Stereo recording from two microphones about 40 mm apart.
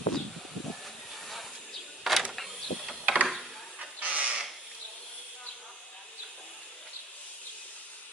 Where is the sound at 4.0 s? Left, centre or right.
Right.